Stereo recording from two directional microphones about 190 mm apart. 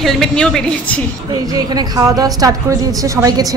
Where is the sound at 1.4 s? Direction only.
20° right (ahead or behind).